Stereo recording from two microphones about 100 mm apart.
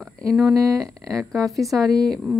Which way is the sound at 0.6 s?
35° right (ahead or behind).